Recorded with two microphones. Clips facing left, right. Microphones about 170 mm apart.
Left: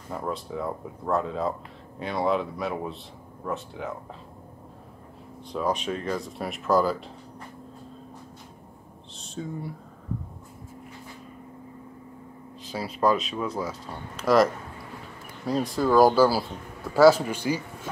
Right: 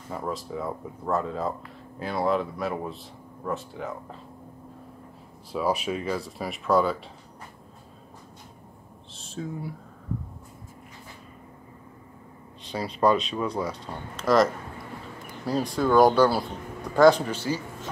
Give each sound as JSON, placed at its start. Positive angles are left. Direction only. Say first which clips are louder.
{"t": 0.1, "sound": "speech", "louder": "even", "side_deg": 0}
{"t": 5.5, "sound": "speech", "louder": "right 1 dB", "side_deg": -5}
{"t": 9.1, "sound": "a sound", "louder": "even", "side_deg": 0}
{"t": 12.6, "sound": "speech", "louder": "right 1 dB", "side_deg": 5}